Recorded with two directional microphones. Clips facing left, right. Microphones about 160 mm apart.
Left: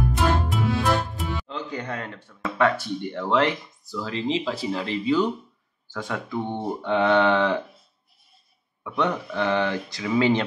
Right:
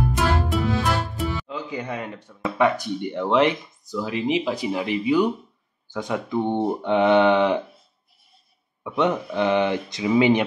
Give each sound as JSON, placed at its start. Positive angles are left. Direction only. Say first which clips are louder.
{"t": 0.5, "sound": "speech", "louder": "even", "side_deg": 0}
{"t": 8.8, "sound": "speech", "louder": "right 3 dB", "side_deg": -20}